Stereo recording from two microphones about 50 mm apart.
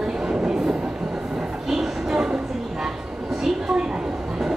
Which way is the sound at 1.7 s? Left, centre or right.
Centre.